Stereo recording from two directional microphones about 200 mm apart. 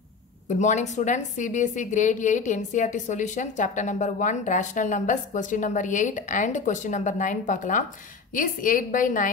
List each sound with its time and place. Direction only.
0.6 s a woman's voice: 35° left (ahead or behind)